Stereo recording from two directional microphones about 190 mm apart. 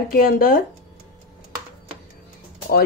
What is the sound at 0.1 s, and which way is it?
Speech, 50° left (ahead or behind).